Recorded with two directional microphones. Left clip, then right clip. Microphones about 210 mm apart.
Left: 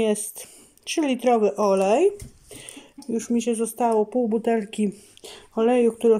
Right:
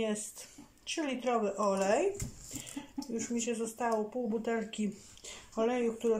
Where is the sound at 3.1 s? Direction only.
55° left (ahead or behind).